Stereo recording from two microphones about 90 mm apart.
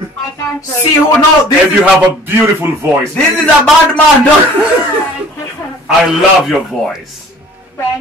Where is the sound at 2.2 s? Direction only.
25° right (ahead or behind).